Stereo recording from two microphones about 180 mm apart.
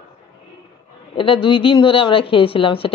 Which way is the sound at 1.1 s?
30° left (ahead or behind).